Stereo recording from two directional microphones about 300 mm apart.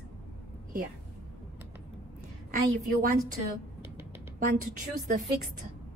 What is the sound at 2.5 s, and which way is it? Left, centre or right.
Speech, right.